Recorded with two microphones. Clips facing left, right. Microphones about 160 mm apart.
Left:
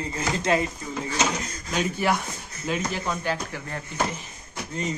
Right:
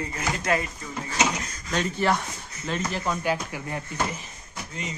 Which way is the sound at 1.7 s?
5° left (ahead or behind).